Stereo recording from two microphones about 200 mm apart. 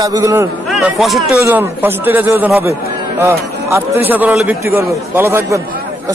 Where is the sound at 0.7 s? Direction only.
Centre (ahead or behind).